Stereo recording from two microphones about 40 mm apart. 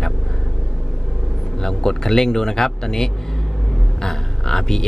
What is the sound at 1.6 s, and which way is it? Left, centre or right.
Speech, centre.